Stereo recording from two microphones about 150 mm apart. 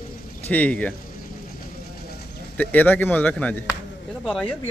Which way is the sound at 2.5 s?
10° left (ahead or behind).